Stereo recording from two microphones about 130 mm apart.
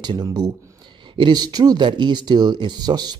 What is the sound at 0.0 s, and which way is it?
Speech, 30° right (ahead or behind).